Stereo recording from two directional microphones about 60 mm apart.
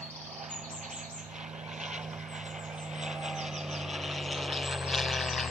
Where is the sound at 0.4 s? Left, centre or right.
Centre.